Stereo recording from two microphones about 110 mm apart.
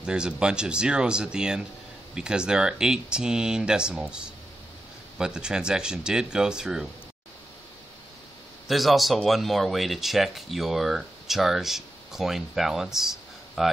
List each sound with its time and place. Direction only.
0.0 s speech: 10° right (ahead or behind)
8.6 s speech: centre (ahead or behind)